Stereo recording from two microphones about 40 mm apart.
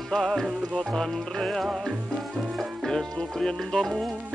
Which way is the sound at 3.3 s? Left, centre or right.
Centre.